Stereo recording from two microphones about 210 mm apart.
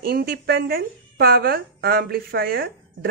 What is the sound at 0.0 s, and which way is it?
A woman's voice, 45° right (ahead or behind).